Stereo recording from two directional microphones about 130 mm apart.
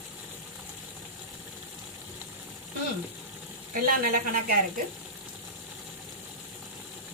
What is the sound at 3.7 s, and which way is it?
Speech, 90° right.